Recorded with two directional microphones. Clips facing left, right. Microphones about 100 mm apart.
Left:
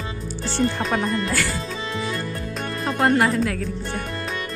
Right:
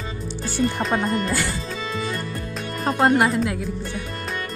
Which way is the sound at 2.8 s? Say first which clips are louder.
Right 2 dB; 35° right (ahead or behind).